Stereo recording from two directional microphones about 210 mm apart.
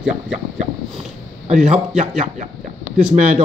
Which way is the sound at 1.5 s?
35° right (ahead or behind).